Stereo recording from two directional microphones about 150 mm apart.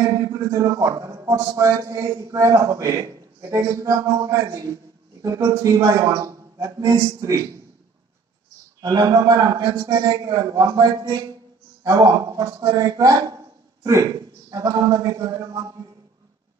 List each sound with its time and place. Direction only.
0.0 s a man's voice: 20° right (ahead or behind)
8.8 s a man's voice: 25° right (ahead or behind)